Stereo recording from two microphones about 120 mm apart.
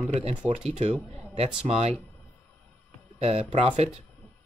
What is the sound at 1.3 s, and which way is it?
Speech, 60° right (ahead or behind).